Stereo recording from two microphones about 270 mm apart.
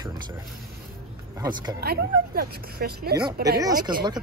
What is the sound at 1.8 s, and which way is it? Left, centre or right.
Speech, right.